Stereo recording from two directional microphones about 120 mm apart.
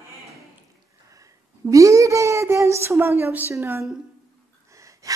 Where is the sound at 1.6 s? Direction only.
25° right (ahead or behind).